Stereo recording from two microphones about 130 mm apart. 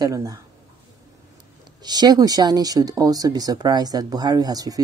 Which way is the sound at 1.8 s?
30° right (ahead or behind).